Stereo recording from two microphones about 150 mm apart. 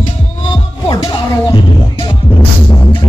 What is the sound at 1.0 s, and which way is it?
Music, 35° left (ahead or behind).